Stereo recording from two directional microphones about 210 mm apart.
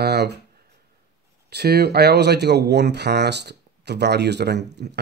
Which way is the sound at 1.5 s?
50° right (ahead or behind).